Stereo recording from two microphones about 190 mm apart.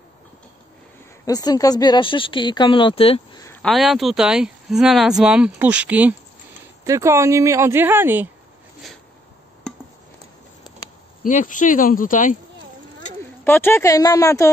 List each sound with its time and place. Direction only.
1.2 s a woman's voice: 20° left (ahead or behind)
3.6 s speech: centre (ahead or behind)
9.6 s a sound: 5° left (ahead or behind)
11.2 s speech: 40° left (ahead or behind)
13.4 s a woman's voice: 10° left (ahead or behind)